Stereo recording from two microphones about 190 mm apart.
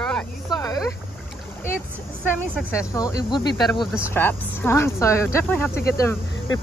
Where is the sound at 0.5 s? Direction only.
20° left (ahead or behind).